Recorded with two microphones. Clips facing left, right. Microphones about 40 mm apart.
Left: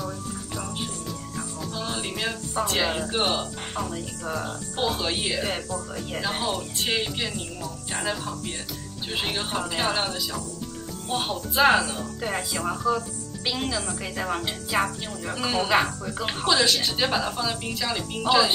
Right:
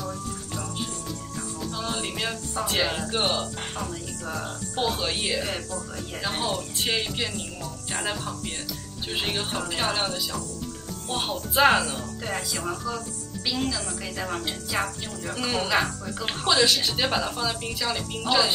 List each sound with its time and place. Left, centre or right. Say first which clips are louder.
1.6 s music: right 1 dB; centre
2.5 s speech: left 1 dB; centre
9.1 s speech: left 1 dB; centre
12.2 s speech: left 3 dB; centre
15.3 s speech: left 2 dB; centre
15.7 s speech: left 2 dB; centre
16.5 s speech: right 2 dB; centre